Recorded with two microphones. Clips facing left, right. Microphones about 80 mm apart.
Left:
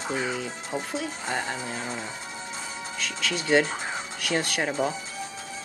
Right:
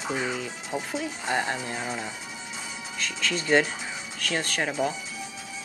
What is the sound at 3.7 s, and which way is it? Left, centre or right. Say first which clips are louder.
Music: left 4 dB; left.